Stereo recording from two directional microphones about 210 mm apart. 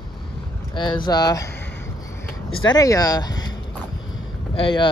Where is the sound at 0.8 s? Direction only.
20° left (ahead or behind).